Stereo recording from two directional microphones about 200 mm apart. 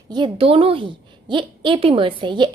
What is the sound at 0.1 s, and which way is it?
A woman's voice, 25° right (ahead or behind).